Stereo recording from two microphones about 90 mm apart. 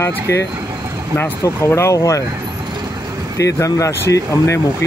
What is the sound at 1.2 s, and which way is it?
Speech, 30° left (ahead or behind).